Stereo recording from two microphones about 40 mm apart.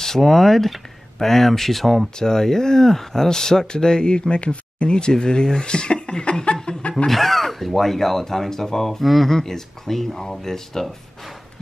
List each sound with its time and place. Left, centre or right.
0.0 s speech: centre
2.1 s speech: centre
7.1 s speech: centre
9.3 s speech: centre